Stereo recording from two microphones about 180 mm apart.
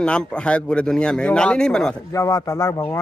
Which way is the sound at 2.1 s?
20° left (ahead or behind).